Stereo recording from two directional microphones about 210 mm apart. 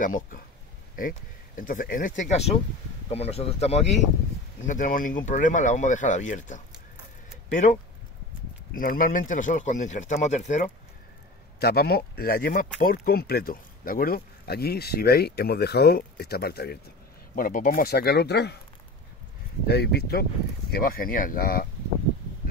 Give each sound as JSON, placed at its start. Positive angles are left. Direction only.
{"t": 0.0, "sound": "speech", "side_deg": 40}
{"t": 8.7, "sound": "speech", "side_deg": 40}
{"t": 11.6, "sound": "speech", "side_deg": 50}
{"t": 19.7, "sound": "speech", "side_deg": 50}